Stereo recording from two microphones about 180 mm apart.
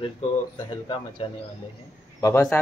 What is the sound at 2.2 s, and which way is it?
Speech, 15° left (ahead or behind).